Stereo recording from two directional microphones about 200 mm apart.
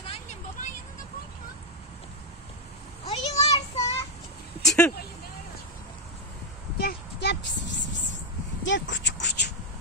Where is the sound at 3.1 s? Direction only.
30° left (ahead or behind).